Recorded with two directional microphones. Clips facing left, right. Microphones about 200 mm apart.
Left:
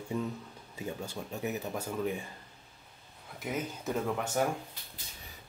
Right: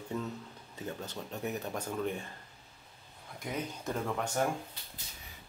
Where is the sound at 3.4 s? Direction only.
5° left (ahead or behind).